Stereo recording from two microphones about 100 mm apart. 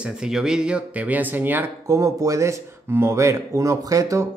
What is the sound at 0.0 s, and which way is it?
Speech, 5° right (ahead or behind).